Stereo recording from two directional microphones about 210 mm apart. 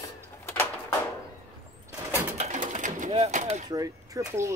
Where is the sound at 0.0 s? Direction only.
10° left (ahead or behind).